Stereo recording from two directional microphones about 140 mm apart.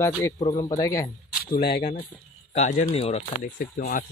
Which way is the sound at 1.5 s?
90° left.